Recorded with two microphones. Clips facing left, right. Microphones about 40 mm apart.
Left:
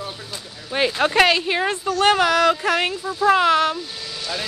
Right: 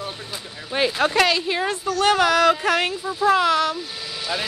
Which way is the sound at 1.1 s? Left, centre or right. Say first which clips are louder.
Left 3 dB; left.